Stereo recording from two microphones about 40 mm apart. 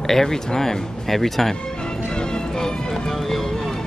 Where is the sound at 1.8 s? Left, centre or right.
Centre.